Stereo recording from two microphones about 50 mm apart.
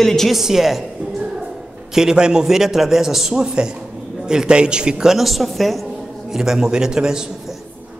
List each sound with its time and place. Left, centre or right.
0.0 s a woman's voice: centre
0.3 s a woman's voice: centre
2.0 s a man's voice: centre
5.1 s a woman's voice: centre
6.3 s a man's voice: centre